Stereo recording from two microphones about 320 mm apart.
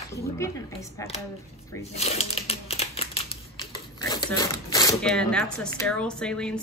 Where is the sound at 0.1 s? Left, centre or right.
Centre.